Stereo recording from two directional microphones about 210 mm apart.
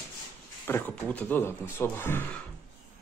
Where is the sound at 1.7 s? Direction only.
10° left (ahead or behind).